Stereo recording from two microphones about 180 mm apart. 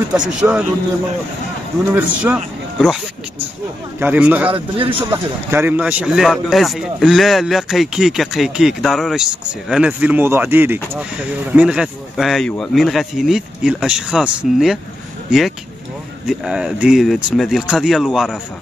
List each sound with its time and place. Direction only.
0.1 s a man's voice: 5° right (ahead or behind)
2.0 s a man's voice: 5° right (ahead or behind)
4.0 s a man's voice: 10° right (ahead or behind)
4.5 s a man's voice: 30° right (ahead or behind)
5.5 s a man's voice: 10° right (ahead or behind)
16.3 s a man's voice: 5° right (ahead or behind)